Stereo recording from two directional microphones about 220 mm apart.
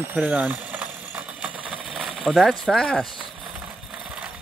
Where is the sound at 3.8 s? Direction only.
Centre (ahead or behind).